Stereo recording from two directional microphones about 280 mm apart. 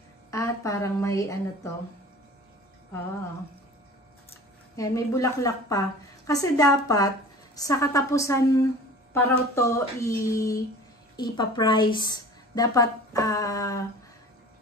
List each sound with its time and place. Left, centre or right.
0.3 s a woman's voice: centre
4.7 s a woman's voice: centre